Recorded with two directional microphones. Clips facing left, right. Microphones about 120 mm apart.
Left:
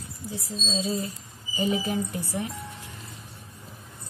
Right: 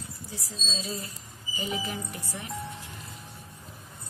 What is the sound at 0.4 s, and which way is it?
Speech, 25° left (ahead or behind).